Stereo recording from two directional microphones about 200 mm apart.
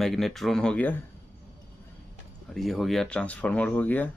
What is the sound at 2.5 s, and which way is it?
Speech, centre (ahead or behind).